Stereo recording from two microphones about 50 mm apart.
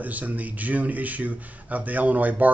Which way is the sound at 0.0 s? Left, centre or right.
Right.